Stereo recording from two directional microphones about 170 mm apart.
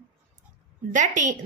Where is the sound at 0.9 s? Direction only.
45° right (ahead or behind).